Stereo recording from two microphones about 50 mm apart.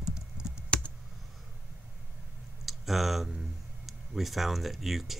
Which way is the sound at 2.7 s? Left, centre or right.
Centre.